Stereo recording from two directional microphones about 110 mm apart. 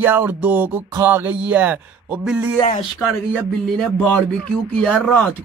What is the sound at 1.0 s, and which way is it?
Music, 20° right (ahead or behind).